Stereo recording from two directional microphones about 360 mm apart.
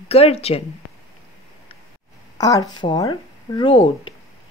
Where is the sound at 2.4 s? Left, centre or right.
Centre.